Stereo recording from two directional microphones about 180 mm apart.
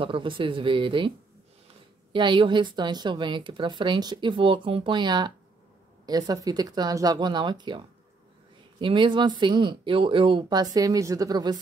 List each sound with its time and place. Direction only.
0.0 s a woman's voice: 30° right (ahead or behind)
2.1 s a woman's voice: 25° right (ahead or behind)